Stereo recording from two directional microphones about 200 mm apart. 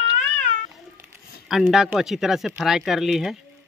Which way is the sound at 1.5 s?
Centre (ahead or behind).